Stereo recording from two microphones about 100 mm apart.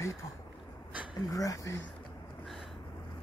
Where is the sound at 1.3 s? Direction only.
35° left (ahead or behind).